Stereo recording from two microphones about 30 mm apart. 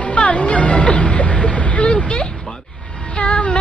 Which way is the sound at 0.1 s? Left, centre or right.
Left.